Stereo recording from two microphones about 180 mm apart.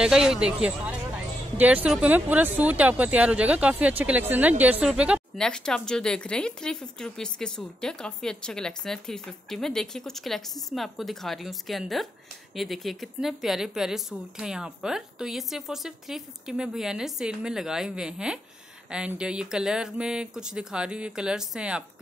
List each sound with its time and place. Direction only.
0.0 s speech: 5° right (ahead or behind)